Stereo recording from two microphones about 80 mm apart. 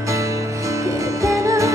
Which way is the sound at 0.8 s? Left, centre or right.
Right.